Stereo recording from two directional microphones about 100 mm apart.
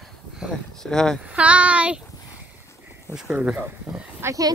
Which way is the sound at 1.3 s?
10° right (ahead or behind).